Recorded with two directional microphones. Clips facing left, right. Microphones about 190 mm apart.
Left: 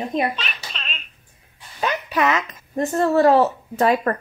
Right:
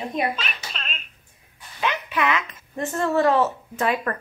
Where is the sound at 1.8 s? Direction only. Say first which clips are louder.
Left 3 dB; 40° left (ahead or behind).